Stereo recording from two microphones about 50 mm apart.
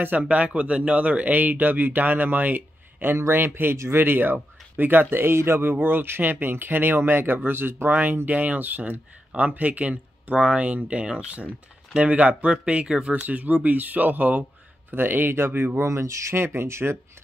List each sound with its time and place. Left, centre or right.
0.0 s speech: right
3.7 s speech: right
4.0 s speech: right
15.8 s speech: right
16.4 s speech: right